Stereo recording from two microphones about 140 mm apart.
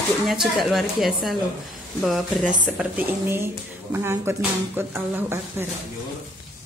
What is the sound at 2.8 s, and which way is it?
Speech, 15° right (ahead or behind).